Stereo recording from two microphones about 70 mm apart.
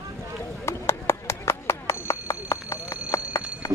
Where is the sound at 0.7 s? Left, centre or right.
Left.